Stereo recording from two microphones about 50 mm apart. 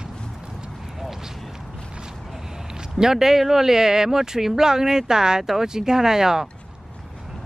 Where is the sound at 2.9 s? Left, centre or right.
Centre.